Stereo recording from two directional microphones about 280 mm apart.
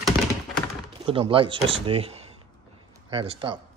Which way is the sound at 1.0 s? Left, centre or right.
Centre.